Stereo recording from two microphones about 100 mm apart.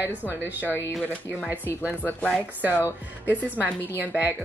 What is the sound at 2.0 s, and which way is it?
Speech, 15° left (ahead or behind).